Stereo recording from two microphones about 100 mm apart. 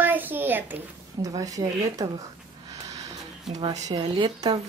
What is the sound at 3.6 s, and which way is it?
Speech, 50° right (ahead or behind).